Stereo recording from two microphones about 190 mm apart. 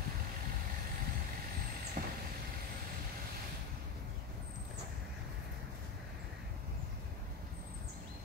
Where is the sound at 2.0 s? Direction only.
50° right (ahead or behind).